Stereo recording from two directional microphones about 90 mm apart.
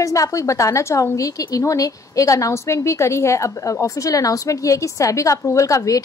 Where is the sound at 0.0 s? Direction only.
40° left (ahead or behind).